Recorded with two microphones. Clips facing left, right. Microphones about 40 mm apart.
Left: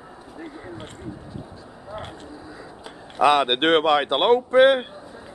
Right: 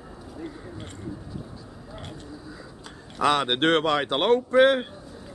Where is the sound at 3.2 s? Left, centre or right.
Centre.